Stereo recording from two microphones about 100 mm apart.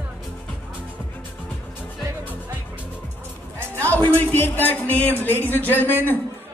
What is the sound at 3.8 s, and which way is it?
Speech, 15° left (ahead or behind).